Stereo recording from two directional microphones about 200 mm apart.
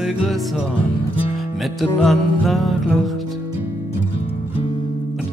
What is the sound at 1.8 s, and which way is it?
Music, centre (ahead or behind).